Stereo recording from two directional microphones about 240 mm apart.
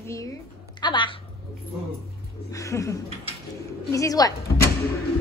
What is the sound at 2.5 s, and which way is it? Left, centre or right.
Speech, centre.